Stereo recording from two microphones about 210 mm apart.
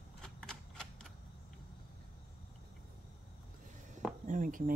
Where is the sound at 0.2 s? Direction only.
5° left (ahead or behind).